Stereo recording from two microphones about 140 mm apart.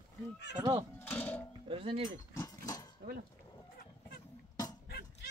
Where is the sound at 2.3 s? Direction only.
25° left (ahead or behind).